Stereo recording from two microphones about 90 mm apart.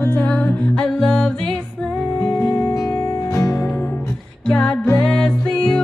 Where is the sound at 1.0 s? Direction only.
10° left (ahead or behind).